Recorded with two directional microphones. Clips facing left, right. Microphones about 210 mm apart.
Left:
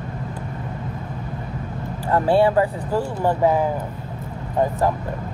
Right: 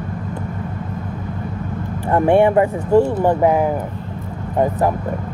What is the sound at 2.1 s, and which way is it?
Speech, 20° right (ahead or behind).